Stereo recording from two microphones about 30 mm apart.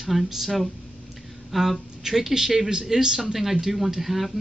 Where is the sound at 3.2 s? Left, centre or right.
Centre.